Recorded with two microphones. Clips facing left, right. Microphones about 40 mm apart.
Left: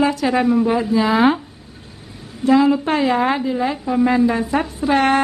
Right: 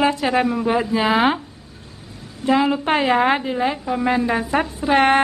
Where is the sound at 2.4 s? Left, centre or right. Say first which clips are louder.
Left 4 dB; right.